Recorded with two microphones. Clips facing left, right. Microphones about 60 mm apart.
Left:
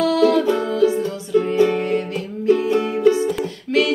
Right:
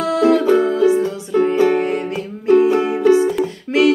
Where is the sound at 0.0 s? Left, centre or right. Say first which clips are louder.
Right 1 dB; right.